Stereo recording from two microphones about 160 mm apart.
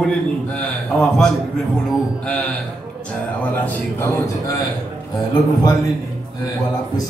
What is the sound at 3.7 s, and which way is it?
Speech, 15° left (ahead or behind).